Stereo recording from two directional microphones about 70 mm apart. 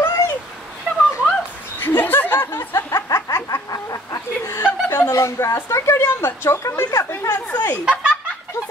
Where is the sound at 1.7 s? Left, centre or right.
Left.